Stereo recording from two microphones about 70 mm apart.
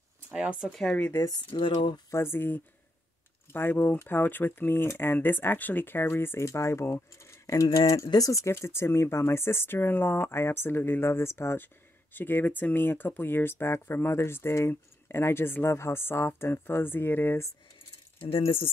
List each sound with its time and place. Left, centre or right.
0.3 s speech: centre
0.7 s speech: centre
1.5 s speech: left
2.0 s speech: left